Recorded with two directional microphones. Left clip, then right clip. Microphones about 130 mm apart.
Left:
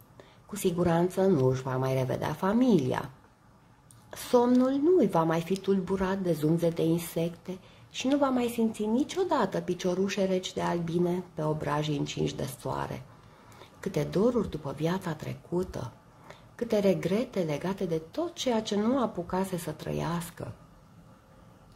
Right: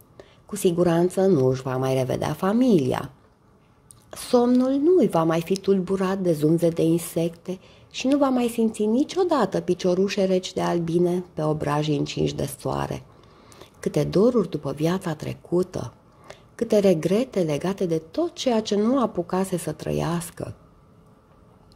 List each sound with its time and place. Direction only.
0.2 s a woman's voice: 30° right (ahead or behind)
4.1 s a woman's voice: 25° right (ahead or behind)